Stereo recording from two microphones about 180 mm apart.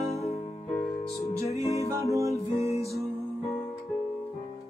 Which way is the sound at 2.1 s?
15° right (ahead or behind).